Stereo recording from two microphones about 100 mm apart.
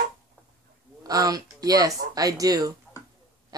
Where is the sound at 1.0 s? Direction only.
40° right (ahead or behind).